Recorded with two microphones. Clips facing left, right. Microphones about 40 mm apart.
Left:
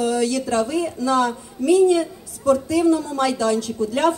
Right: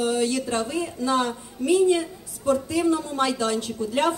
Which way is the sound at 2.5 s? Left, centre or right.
Right.